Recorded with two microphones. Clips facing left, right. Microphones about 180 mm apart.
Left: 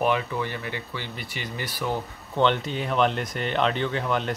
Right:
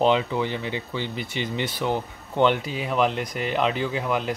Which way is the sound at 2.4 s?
5° right (ahead or behind).